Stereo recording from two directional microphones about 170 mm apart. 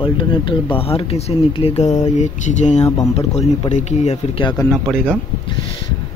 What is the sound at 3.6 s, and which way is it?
Speech, 45° left (ahead or behind).